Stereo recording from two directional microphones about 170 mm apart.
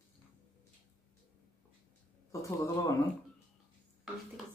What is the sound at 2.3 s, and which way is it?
Speech, 20° left (ahead or behind).